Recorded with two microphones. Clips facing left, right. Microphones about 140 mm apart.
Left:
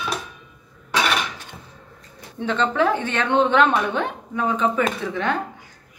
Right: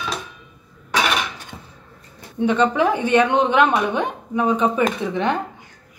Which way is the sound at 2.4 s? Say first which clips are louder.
Right 3 dB; 15° right (ahead or behind).